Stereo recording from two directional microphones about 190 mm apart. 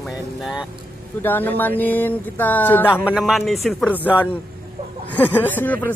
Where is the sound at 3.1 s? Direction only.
Centre (ahead or behind).